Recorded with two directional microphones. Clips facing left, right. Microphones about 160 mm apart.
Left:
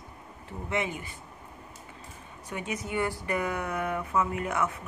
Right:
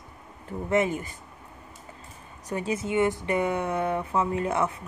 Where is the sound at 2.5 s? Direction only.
30° right (ahead or behind).